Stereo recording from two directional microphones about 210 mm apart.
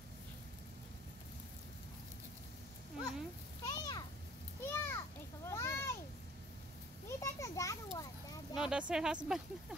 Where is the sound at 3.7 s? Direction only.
20° left (ahead or behind).